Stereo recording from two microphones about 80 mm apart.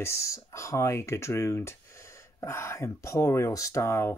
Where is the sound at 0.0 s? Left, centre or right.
Left.